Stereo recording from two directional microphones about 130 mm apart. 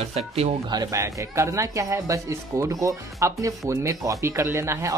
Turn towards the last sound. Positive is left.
turn(degrees=-20)  # may be behind; listen again after turning